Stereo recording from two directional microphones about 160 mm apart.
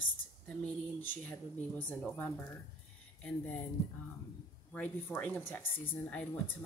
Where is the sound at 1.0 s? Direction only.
10° left (ahead or behind).